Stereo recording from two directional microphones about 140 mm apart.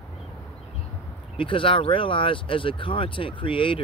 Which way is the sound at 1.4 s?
40° left (ahead or behind).